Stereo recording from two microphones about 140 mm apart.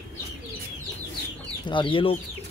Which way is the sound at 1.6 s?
35° left (ahead or behind).